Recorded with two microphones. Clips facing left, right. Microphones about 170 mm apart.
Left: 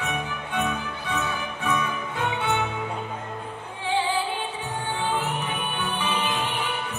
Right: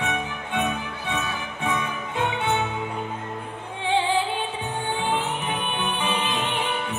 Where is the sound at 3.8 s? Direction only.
25° right (ahead or behind).